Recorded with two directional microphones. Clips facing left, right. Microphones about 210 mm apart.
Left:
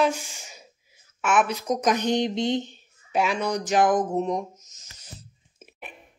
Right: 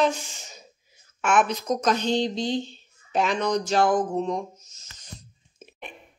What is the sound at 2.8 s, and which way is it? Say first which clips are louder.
Speech: even; 10° left (ahead or behind).